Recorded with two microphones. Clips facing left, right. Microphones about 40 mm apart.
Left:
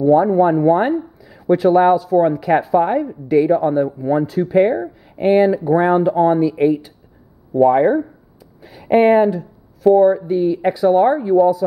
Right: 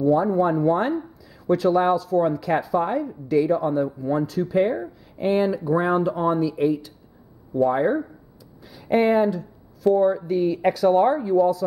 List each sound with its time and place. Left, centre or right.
0.0 s speech: left